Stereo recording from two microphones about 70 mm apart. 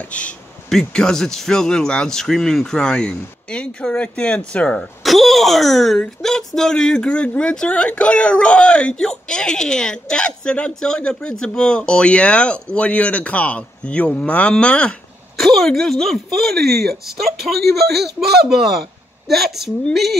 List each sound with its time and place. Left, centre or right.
0.7 s speech: centre
5.0 s speech: centre
15.3 s speech: centre